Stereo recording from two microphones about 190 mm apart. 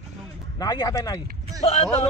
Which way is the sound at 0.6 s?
20° left (ahead or behind).